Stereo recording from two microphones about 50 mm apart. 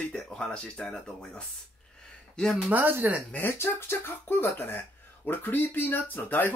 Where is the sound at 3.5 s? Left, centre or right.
Left.